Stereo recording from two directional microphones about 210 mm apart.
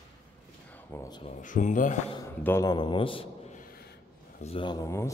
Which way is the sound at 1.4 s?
35° left (ahead or behind).